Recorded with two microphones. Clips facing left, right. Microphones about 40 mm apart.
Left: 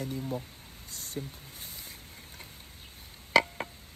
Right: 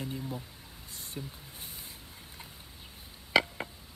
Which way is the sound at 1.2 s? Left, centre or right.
Centre.